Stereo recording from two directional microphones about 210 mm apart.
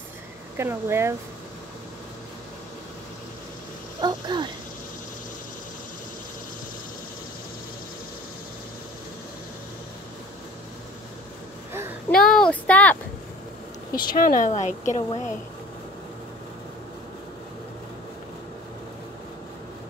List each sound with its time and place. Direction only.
0.6 s speech: 10° right (ahead or behind)
4.0 s speech: 20° right (ahead or behind)
12.1 s a sound: 5° left (ahead or behind)
14.1 s a woman's voice: 40° left (ahead or behind)